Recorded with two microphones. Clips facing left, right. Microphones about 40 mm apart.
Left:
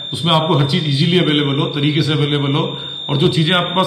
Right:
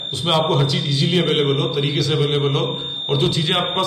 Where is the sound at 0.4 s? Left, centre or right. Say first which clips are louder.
Left 3 dB; centre.